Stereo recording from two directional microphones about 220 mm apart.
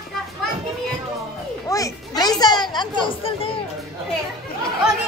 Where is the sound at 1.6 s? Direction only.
15° left (ahead or behind).